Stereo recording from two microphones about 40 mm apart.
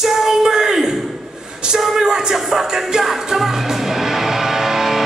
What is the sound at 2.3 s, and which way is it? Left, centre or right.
Music, centre.